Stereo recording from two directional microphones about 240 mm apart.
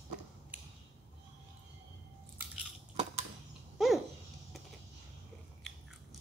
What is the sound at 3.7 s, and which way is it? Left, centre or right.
Babbling, centre.